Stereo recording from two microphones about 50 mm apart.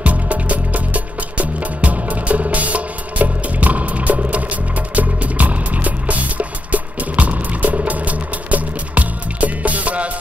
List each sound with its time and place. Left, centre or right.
0.0 s music: right